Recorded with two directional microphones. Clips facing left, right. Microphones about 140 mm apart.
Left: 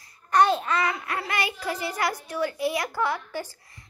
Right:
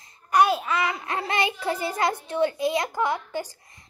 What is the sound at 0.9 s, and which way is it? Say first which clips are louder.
A child's voice: right 1 dB; 25° right (ahead or behind).